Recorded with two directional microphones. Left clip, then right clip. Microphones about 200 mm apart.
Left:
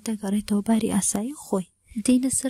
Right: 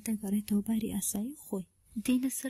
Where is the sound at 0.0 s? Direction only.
15° left (ahead or behind).